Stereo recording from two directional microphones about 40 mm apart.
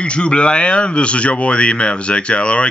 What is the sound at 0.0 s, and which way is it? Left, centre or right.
Speech, left.